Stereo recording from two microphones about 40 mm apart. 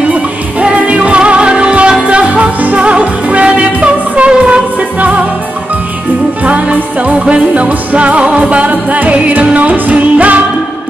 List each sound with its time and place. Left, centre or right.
0.1 s music: right
6.4 s music: right